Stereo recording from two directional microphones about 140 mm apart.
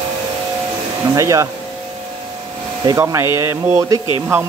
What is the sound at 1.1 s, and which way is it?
Speech, 25° right (ahead or behind).